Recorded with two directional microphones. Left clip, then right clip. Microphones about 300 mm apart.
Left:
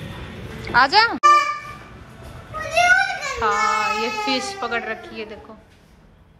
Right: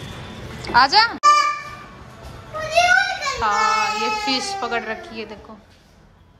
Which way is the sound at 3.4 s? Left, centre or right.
Centre.